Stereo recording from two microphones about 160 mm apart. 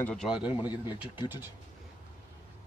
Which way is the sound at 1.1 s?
10° right (ahead or behind).